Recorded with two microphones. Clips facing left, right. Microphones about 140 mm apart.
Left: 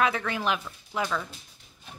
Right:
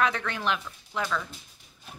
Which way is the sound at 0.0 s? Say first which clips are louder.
Left 1 dB; 5° left (ahead or behind).